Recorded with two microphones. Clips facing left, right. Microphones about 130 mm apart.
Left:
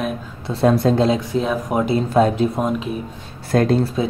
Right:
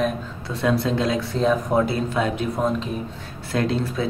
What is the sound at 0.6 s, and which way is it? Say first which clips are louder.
Speech: left 6 dB; 45° left (ahead or behind).